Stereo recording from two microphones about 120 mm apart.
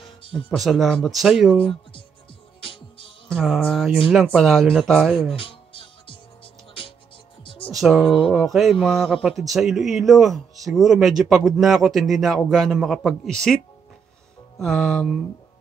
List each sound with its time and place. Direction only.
0.5 s speech: centre (ahead or behind)
2.6 s music: 45° left (ahead or behind)
3.3 s music: centre (ahead or behind)
3.7 s speech: 5° right (ahead or behind)
5.3 s music: 50° left (ahead or behind)
7.4 s music: 50° left (ahead or behind)
7.7 s speech: centre (ahead or behind)
14.6 s speech: 5° left (ahead or behind)